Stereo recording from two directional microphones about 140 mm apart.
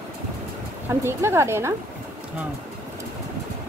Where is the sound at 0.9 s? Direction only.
20° right (ahead or behind).